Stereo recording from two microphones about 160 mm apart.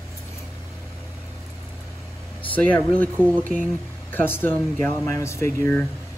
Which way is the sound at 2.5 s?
10° left (ahead or behind).